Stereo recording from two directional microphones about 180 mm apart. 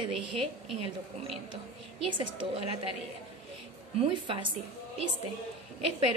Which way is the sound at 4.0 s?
30° right (ahead or behind).